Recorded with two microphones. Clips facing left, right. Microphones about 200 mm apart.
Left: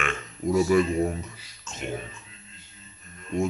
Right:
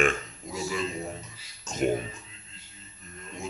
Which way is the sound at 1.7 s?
35° right (ahead or behind).